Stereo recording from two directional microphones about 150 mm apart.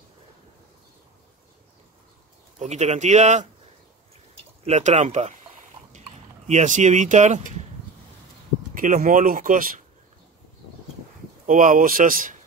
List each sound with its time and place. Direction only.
2.6 s speech: 50° right (ahead or behind)
4.6 s speech: 50° right (ahead or behind)
8.7 s speech: 60° right (ahead or behind)
11.4 s speech: 60° right (ahead or behind)